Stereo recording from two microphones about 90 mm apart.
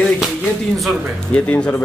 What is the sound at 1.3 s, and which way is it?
Speech, 15° left (ahead or behind).